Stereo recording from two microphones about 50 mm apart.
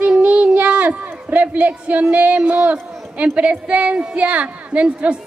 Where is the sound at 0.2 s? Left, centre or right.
Right.